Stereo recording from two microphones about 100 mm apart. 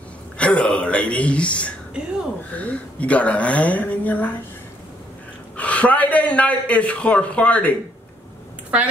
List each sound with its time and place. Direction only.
0.4 s speech: 10° left (ahead or behind)
5.6 s speech: 15° left (ahead or behind)